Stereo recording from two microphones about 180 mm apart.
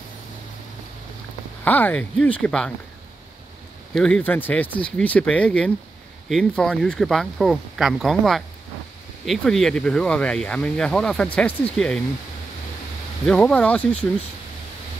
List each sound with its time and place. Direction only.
1.6 s speech: 10° left (ahead or behind)
3.9 s speech: 5° left (ahead or behind)
13.2 s speech: 5° left (ahead or behind)